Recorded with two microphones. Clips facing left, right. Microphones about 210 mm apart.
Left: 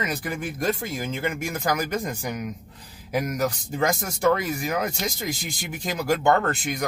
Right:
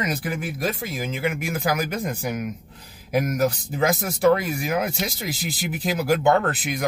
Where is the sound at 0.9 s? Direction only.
10° right (ahead or behind).